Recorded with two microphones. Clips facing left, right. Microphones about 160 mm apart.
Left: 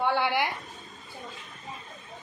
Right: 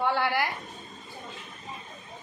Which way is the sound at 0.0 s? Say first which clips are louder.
Left 1 dB; 15° left (ahead or behind).